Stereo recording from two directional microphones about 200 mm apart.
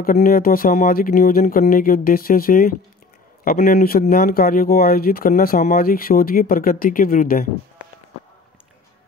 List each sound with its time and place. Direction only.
0.0 s speech: 45° left (ahead or behind)